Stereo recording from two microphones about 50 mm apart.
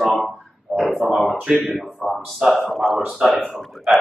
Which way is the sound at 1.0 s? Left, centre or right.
Centre.